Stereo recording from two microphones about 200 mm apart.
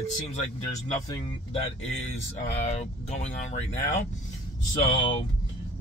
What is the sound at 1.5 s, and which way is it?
Speech, 35° left (ahead or behind).